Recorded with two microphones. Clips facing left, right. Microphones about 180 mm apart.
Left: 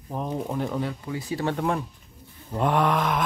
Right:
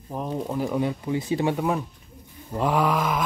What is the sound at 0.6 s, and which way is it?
Speech, 10° right (ahead or behind).